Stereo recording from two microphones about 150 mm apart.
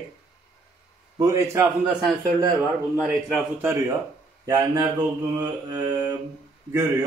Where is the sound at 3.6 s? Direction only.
15° right (ahead or behind).